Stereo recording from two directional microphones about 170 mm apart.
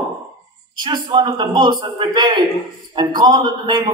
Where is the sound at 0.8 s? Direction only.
25° right (ahead or behind).